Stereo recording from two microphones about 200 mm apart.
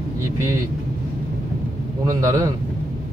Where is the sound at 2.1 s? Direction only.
15° right (ahead or behind).